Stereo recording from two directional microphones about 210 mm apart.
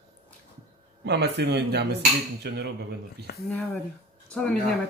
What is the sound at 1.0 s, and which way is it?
Cutlery, 55° right (ahead or behind).